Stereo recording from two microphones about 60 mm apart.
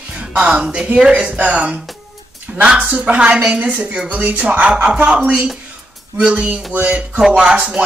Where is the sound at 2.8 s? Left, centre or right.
Right.